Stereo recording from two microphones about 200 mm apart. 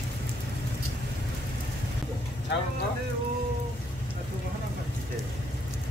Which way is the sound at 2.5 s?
60° left (ahead or behind).